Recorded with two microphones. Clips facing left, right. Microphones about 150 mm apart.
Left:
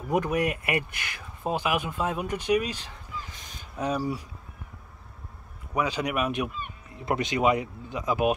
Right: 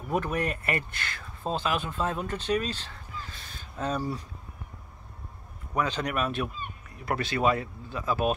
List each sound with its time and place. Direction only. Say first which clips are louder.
0.1 s speech: left 3 dB; 15° left (ahead or behind)
5.8 s speech: left 1 dB; 10° left (ahead or behind)